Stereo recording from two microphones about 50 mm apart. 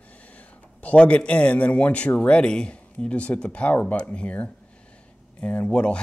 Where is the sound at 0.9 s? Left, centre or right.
Left.